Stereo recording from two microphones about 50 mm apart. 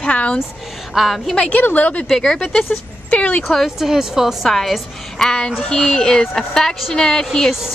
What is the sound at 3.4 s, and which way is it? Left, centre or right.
Speech, centre.